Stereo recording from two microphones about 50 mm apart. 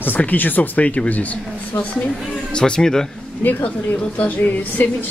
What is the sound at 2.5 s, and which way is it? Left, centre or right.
Speech, centre.